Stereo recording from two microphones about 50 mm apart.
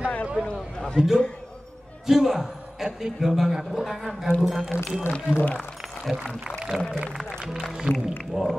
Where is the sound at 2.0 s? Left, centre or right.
Centre.